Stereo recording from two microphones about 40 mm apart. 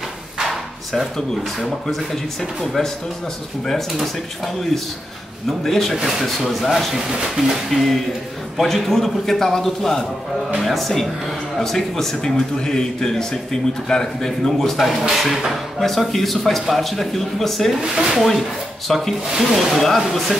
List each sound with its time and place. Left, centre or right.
0.4 s a sound: centre
1.6 s a man's voice: centre
3.6 s a man's voice: centre
5.5 s a man's voice: centre
5.9 s a man's voice: centre
7.1 s speech: centre
7.7 s a man's voice: centre
14.8 s a man's voice: centre
15.8 s a man's voice: centre
17.7 s speech: centre
18.9 s a man's voice: centre